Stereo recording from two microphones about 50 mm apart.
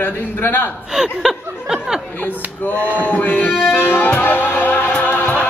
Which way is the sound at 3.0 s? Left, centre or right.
Left.